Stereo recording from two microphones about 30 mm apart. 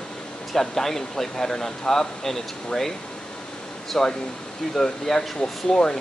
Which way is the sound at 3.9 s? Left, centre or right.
Centre.